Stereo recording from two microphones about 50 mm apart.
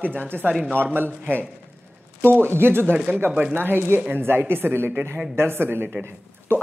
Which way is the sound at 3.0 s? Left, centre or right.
Right.